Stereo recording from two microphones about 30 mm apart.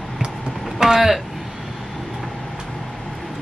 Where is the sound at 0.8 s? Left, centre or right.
Centre.